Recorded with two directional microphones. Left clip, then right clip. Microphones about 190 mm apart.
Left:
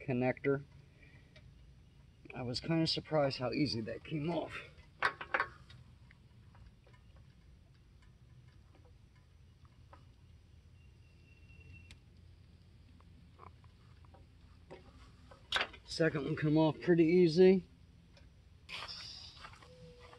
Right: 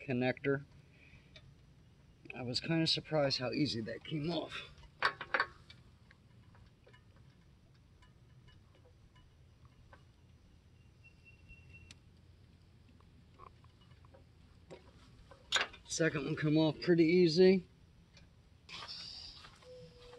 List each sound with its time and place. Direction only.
0.0 s speech: 5° right (ahead or behind)
2.2 s speech: 5° right (ahead or behind)
13.4 s pig: 40° left (ahead or behind)
15.5 s speech: centre (ahead or behind)
18.7 s a sound: 55° left (ahead or behind)
19.0 s a sound: 15° left (ahead or behind)